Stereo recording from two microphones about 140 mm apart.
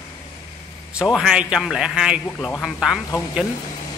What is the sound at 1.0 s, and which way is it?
A man's voice, 5° right (ahead or behind).